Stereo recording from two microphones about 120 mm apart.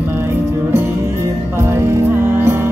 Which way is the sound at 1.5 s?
20° right (ahead or behind).